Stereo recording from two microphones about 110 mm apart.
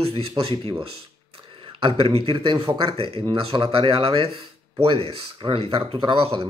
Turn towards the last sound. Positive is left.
turn(degrees=-45)  # may be behind; listen again after turning